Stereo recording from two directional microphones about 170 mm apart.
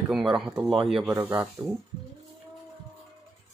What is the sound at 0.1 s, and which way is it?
Speech, 5° right (ahead or behind).